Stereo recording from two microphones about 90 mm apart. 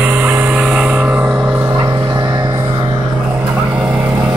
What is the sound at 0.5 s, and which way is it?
Gong, 10° right (ahead or behind).